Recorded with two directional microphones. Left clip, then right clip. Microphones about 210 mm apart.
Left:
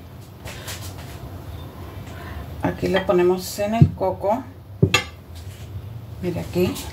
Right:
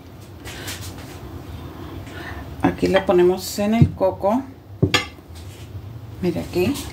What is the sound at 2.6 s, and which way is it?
Speech, 55° right (ahead or behind).